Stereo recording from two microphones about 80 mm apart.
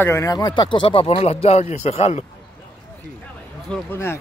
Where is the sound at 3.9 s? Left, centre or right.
Left.